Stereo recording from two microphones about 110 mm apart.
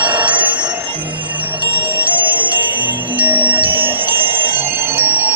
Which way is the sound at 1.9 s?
15° right (ahead or behind).